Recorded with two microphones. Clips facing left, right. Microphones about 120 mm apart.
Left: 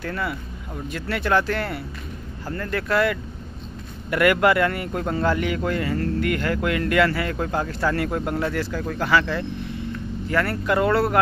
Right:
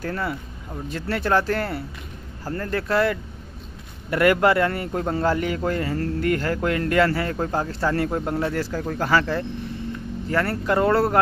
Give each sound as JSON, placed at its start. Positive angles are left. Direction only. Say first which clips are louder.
{"t": 0.0, "sound": "a man's voice", "louder": "right 1 dB", "side_deg": -35}